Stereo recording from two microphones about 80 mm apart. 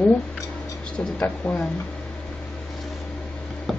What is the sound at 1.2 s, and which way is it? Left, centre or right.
Speech, centre.